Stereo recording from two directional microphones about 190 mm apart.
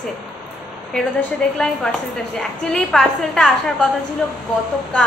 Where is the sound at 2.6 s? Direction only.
5° left (ahead or behind).